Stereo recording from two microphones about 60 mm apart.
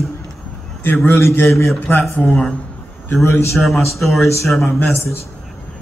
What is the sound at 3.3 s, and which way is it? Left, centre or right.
Speech, left.